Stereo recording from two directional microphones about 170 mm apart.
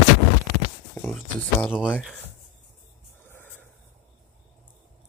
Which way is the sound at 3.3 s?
10° left (ahead or behind).